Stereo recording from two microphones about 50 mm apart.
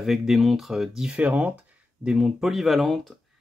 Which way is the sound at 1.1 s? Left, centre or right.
Right.